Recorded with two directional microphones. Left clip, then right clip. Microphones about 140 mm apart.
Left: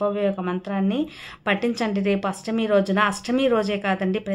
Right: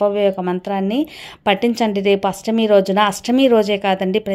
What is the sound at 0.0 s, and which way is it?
A woman's voice, 45° right (ahead or behind).